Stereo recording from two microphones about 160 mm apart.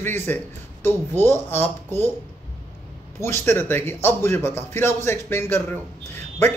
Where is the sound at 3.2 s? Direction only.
15° left (ahead or behind).